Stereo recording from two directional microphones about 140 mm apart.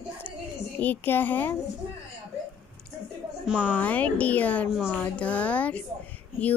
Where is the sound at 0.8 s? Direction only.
15° left (ahead or behind).